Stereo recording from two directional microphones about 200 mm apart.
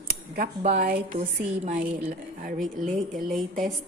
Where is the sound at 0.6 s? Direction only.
40° right (ahead or behind).